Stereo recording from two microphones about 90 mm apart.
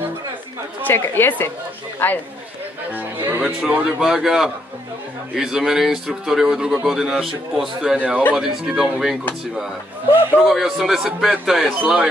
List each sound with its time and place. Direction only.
0.8 s a woman's voice: 25° left (ahead or behind)
2.9 s a man's voice: 20° right (ahead or behind); by 9.1 s 5° right (ahead or behind)
10.4 s a man's voice: 5° right (ahead or behind)